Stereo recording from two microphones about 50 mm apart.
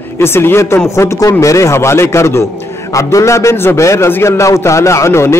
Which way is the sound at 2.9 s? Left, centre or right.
Left.